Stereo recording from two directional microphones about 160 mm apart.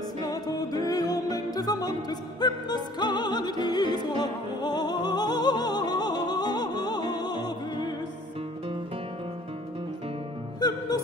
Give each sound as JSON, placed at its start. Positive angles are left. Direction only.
{"t": 0.2, "sound": "music", "side_deg": 25}